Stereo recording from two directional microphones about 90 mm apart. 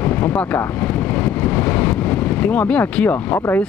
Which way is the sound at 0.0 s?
20° left (ahead or behind).